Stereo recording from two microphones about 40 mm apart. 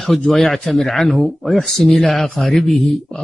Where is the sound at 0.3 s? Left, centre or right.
Centre.